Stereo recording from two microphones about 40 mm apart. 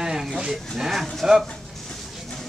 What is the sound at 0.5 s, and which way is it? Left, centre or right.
Speech, centre.